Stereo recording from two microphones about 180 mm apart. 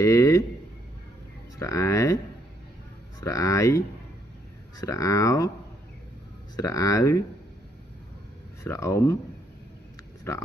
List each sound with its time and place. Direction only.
0.0 s speech: 15° left (ahead or behind)
1.6 s speech: 15° left (ahead or behind)
3.2 s speech: 20° left (ahead or behind)
6.5 s speech: 20° left (ahead or behind)
8.6 s speech: 15° left (ahead or behind)